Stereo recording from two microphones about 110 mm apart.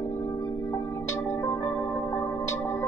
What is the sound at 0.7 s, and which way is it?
Music, 25° left (ahead or behind).